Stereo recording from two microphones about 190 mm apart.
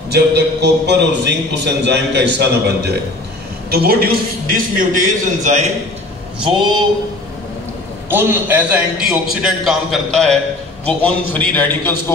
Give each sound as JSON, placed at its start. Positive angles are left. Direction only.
{"t": 0.1, "sound": "a man's voice", "side_deg": -60}
{"t": 8.1, "sound": "a man's voice", "side_deg": -10}